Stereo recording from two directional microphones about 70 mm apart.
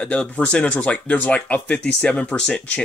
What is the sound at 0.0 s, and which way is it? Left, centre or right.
Speech, centre.